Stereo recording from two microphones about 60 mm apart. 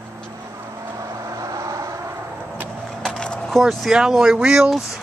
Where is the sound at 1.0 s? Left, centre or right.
Right.